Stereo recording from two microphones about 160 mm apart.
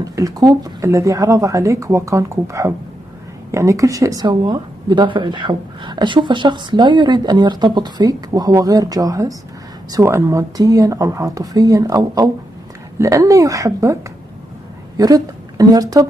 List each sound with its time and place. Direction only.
0.0 s speech: 20° right (ahead or behind)
15.0 s speech: 25° right (ahead or behind)